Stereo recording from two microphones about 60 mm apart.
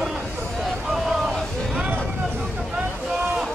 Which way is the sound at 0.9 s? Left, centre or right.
Centre.